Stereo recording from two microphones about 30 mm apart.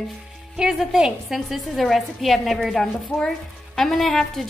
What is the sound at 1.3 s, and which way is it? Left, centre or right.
A woman's voice, centre.